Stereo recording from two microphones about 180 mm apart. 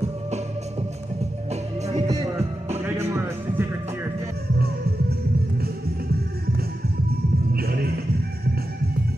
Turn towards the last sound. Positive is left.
turn(degrees=-55)  # may be behind; listen again after turning